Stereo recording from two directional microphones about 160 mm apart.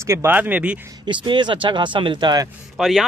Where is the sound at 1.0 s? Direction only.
30° right (ahead or behind).